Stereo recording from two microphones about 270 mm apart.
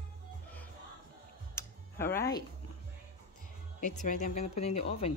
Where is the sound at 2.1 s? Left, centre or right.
Centre.